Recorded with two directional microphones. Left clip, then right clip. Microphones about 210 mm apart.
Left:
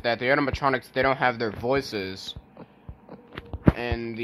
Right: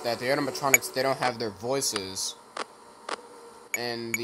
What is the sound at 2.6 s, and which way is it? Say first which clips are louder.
Insect: right 11 dB; 65° right (ahead or behind).